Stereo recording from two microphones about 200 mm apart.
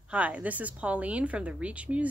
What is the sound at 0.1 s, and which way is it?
Speech, 5° right (ahead or behind).